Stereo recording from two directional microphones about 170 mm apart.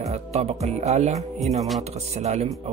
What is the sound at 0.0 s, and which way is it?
Music, 40° right (ahead or behind).